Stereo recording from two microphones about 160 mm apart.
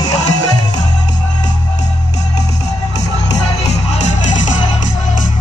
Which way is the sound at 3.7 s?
45° left (ahead or behind).